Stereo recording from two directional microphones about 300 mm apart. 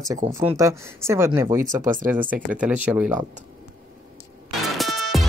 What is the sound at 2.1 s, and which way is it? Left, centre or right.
Speech, centre.